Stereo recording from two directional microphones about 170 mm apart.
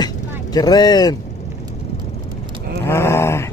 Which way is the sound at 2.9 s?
15° left (ahead or behind).